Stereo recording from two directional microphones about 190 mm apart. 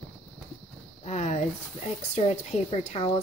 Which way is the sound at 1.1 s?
40° left (ahead or behind).